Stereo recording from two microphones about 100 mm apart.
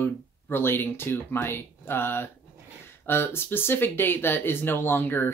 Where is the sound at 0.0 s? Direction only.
20° left (ahead or behind).